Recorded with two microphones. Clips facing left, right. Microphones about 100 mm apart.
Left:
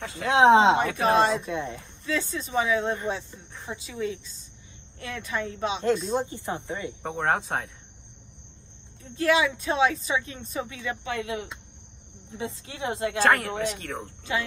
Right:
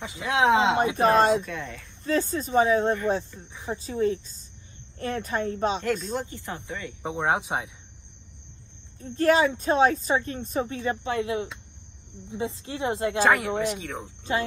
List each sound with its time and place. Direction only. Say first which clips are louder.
0.0 s speech: left 2 dB; 15° right (ahead or behind)
0.3 s speech: left 4 dB; 30° left (ahead or behind)
0.9 s speech: right 2 dB; 40° right (ahead or behind)
1.5 s speech: left 4 dB; 25° left (ahead or behind)
2.0 s speech: right 4 dB; 40° right (ahead or behind)
6.1 s speech: left 4 dB; 20° left (ahead or behind)
7.0 s speech: right 1 dB; 5° right (ahead or behind)
9.0 s speech: right 2 dB; 45° right (ahead or behind); by 13.2 s 25° right (ahead or behind)
13.2 s speech: even; 5° right (ahead or behind)